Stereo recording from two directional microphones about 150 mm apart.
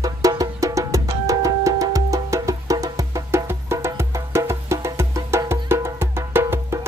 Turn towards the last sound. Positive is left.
turn(degrees=-15)  # may be behind; listen again after turning